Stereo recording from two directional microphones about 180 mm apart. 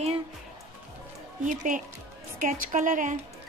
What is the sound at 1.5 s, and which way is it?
Speech, 45° right (ahead or behind).